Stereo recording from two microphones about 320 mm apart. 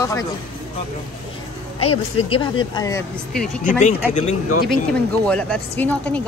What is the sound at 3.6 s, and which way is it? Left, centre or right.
Speech, left.